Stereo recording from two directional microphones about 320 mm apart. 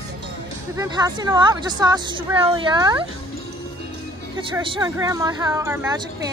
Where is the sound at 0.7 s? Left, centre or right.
Centre.